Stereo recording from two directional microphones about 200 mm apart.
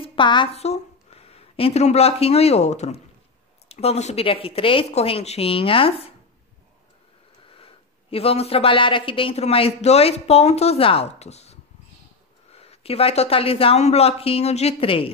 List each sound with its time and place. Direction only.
0.0 s a woman's voice: 25° left (ahead or behind)
7.5 s speech: 30° left (ahead or behind)
12.5 s speech: 30° left (ahead or behind)